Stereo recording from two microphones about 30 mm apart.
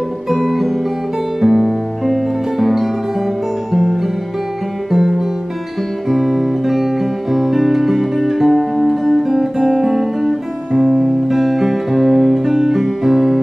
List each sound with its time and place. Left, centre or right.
1.4 s music: centre
3.7 s music: centre
6.0 s guitar: centre
8.3 s music: centre
9.2 s music: centre
10.8 s music: right
11.2 s music: centre